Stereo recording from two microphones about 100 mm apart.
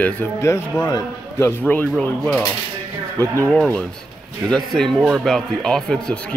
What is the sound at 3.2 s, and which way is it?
Speech, 30° right (ahead or behind).